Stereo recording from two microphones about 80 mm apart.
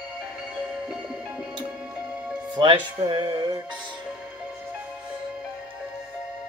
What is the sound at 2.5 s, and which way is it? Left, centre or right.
Speech, right.